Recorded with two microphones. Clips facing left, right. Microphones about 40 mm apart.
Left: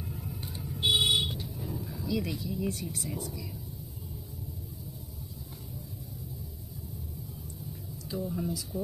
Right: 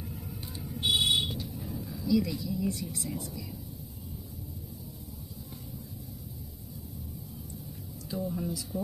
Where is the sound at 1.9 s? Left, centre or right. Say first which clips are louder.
Right 6 dB; left.